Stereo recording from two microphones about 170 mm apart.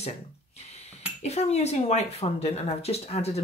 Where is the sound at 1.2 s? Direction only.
40° left (ahead or behind).